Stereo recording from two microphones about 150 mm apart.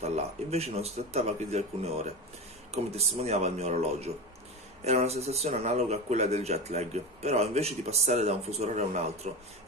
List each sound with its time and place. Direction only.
0.0 s speech: 45° right (ahead or behind)